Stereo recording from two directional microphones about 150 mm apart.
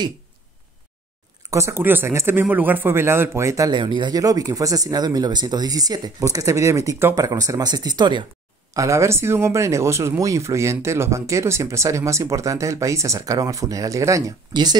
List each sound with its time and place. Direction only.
1.5 s a man's voice: 20° right (ahead or behind)
8.7 s a man's voice: 20° right (ahead or behind)